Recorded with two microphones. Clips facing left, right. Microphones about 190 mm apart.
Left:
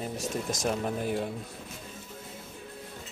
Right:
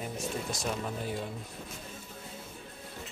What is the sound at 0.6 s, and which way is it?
Speech, 55° left (ahead or behind).